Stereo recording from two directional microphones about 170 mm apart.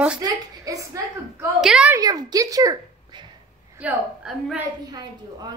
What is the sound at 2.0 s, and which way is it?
Speech, 20° right (ahead or behind).